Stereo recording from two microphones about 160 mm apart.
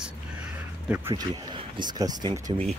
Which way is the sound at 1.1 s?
30° right (ahead or behind).